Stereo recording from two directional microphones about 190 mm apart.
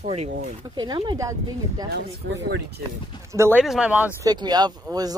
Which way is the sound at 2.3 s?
65° right (ahead or behind).